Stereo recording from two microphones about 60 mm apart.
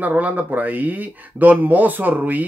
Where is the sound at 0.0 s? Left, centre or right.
Right.